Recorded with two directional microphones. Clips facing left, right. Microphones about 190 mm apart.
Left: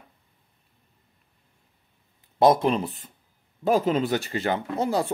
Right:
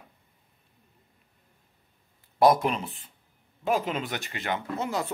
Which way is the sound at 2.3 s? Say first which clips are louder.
Left 2 dB; 25° left (ahead or behind).